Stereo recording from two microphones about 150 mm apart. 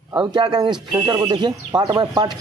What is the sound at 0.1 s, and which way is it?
Speech, 30° right (ahead or behind).